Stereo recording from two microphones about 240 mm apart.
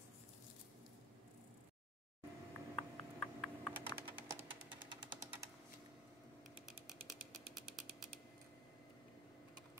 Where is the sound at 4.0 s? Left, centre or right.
Centre.